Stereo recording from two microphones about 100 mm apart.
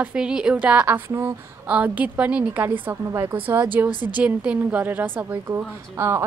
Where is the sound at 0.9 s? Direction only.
25° right (ahead or behind).